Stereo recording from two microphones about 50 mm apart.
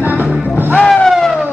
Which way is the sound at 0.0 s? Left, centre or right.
Right.